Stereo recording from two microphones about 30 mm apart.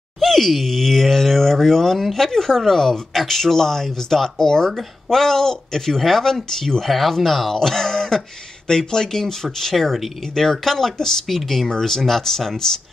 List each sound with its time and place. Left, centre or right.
0.2 s speech: centre